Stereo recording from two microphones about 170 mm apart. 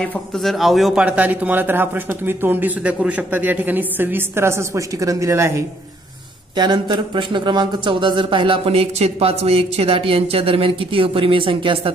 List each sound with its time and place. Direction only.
0.0 s a man's voice: 5° left (ahead or behind); by 11.9 s 30° right (ahead or behind)